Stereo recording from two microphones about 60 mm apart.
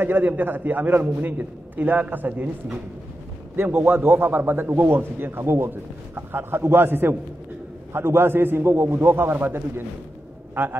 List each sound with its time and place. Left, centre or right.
0.0 s a man's voice: right
3.5 s a man's voice: right